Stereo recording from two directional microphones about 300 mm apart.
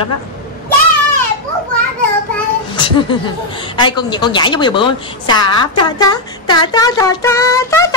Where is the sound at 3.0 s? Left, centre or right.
Centre.